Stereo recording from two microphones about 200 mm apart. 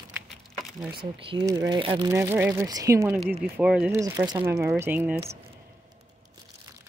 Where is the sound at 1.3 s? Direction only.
20° right (ahead or behind).